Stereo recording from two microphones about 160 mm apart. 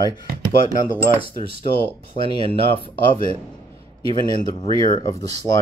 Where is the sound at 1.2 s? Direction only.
35° right (ahead or behind).